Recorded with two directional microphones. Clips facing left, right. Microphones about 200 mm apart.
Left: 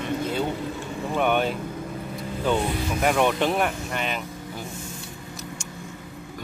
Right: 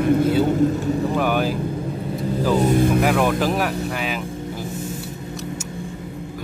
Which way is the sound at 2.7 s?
50° right (ahead or behind).